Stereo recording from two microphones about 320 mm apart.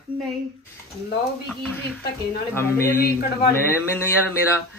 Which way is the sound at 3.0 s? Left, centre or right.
Left.